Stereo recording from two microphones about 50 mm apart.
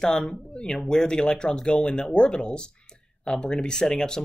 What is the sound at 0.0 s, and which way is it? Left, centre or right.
Speech, centre.